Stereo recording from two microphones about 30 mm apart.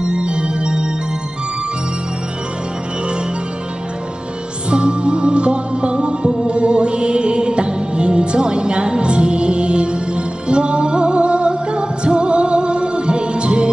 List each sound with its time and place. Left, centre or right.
0.0 s music: right
4.6 s music: right